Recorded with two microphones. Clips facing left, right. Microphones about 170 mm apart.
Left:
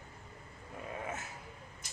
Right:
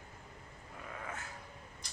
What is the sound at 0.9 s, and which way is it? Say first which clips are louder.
Dog: left 5 dB; 20° left (ahead or behind).